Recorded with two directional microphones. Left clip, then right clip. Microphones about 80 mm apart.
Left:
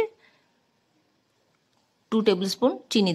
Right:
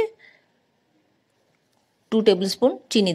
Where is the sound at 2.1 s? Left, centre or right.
Right.